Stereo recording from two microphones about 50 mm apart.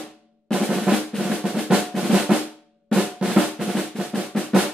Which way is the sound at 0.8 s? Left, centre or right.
Centre.